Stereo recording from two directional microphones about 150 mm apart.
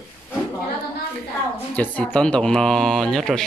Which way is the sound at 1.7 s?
10° left (ahead or behind).